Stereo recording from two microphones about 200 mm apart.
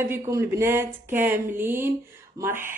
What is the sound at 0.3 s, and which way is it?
Speech, 15° right (ahead or behind).